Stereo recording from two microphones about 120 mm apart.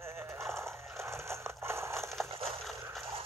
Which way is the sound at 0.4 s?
20° right (ahead or behind).